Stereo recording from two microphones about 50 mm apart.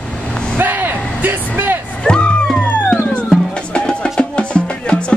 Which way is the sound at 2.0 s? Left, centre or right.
Left.